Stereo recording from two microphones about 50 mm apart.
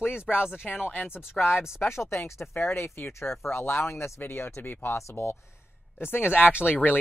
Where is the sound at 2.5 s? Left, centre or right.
Left.